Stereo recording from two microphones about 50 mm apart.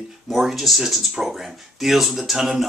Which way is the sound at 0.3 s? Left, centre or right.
Centre.